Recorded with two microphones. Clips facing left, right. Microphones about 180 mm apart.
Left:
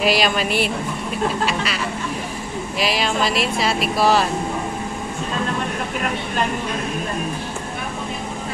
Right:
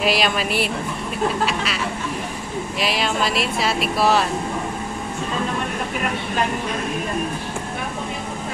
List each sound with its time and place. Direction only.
0.0 s speech: centre (ahead or behind)
2.8 s speech: centre (ahead or behind)